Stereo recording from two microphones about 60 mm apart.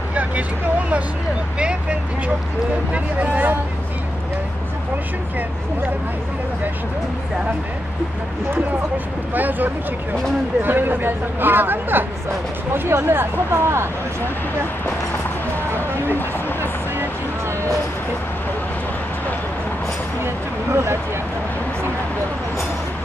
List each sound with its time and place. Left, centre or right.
0.1 s speech: right
8.9 s speech: right
15.7 s a sound: right
16.2 s a sound: left
16.9 s vehicle: right
20.7 s speech: right